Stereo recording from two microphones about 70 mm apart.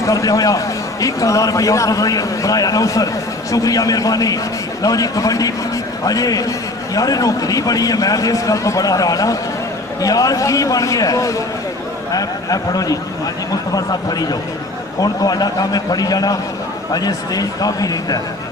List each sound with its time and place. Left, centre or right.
0.0 s a man's voice: left